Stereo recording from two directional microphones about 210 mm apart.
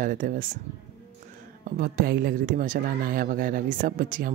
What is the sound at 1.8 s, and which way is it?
Speech, 45° right (ahead or behind).